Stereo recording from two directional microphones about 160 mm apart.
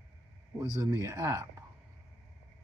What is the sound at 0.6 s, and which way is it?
Speech, 25° right (ahead or behind).